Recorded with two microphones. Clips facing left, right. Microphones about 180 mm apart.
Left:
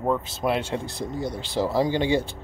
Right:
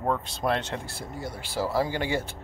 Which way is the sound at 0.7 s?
20° left (ahead or behind).